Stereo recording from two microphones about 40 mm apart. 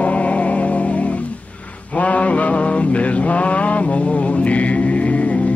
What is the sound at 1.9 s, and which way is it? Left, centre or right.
Mantra, left.